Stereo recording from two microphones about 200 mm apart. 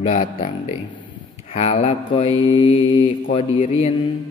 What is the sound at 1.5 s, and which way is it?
Mantra, 30° left (ahead or behind).